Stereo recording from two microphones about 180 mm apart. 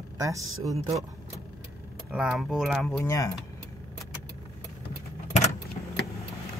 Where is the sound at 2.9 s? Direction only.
15° left (ahead or behind).